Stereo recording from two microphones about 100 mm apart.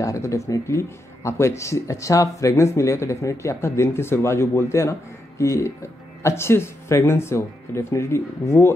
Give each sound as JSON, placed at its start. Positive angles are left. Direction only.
{"t": 0.0, "sound": "speech", "side_deg": 30}